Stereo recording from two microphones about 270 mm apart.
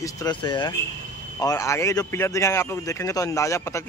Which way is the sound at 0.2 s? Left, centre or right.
Centre.